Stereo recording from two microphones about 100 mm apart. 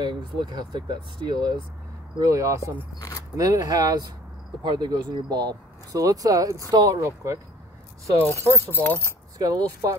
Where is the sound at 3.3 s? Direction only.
40° right (ahead or behind).